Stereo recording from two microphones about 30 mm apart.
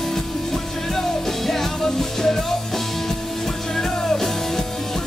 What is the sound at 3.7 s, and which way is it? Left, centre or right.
Music, centre.